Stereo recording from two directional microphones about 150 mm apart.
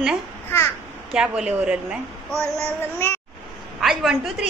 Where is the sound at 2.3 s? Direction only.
20° right (ahead or behind).